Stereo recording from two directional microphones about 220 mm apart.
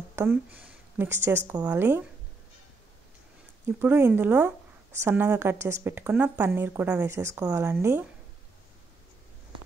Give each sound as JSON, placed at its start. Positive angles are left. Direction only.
{"t": 0.1, "sound": "a woman's voice", "side_deg": -10}
{"t": 3.6, "sound": "a woman's voice", "side_deg": -10}